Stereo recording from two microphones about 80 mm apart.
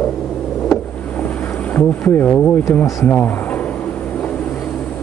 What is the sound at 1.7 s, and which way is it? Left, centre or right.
Speech, centre.